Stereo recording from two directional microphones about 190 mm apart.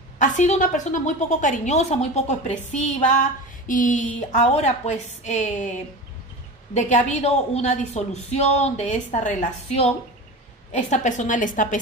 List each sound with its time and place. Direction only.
0.2 s a woman's voice: 40° left (ahead or behind)